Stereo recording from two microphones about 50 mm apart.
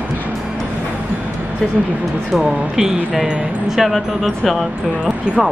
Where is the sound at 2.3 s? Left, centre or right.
Centre.